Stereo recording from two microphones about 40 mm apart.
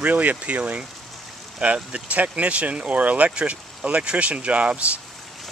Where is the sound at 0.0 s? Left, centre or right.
Right.